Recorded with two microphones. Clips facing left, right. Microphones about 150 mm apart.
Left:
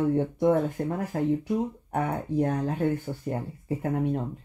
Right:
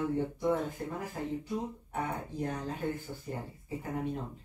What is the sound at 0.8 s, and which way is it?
Speech, 50° left (ahead or behind).